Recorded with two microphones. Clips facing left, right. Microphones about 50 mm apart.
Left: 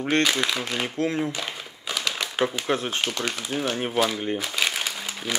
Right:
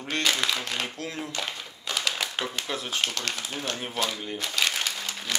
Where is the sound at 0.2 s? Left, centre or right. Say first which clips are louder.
Left 3 dB; centre.